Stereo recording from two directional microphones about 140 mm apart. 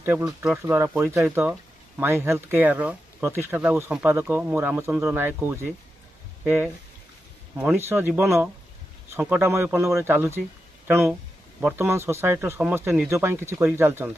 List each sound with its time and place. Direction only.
0.0 s speech: 10° right (ahead or behind)
0.7 s speech: 15° right (ahead or behind)
11.6 s speech: 15° right (ahead or behind)